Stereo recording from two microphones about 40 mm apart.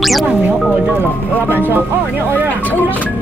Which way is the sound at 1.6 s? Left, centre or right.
Right.